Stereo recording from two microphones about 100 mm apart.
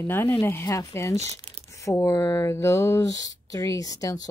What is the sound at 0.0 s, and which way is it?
Speech, 25° left (ahead or behind).